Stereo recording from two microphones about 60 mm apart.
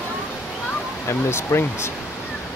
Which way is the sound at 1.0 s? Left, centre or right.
Left.